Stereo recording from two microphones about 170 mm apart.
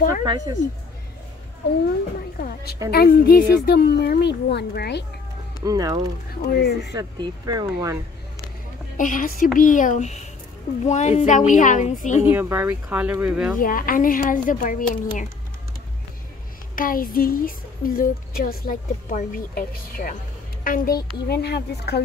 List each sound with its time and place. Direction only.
0.2 s speech: 25° right (ahead or behind)
2.3 s a woman's voice: 60° left (ahead or behind); by 5.0 s 80° left
5.6 s speech: 20° right (ahead or behind)
8.9 s a woman's voice: 50° left (ahead or behind)
12.2 s speech: 15° right (ahead or behind)
13.6 s a woman's voice: 55° left (ahead or behind)
16.7 s a woman's voice: 55° left (ahead or behind); by 22.0 s 70° left (ahead or behind)